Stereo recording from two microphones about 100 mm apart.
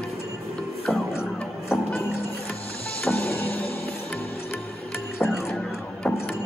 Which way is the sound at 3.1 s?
20° left (ahead or behind).